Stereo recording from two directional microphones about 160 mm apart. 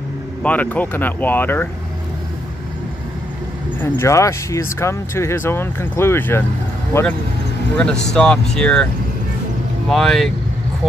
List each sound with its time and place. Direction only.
0.4 s speech: 10° left (ahead or behind)
3.8 s speech: 15° left (ahead or behind)
7.7 s speech: 5° left (ahead or behind)
9.8 s speech: centre (ahead or behind)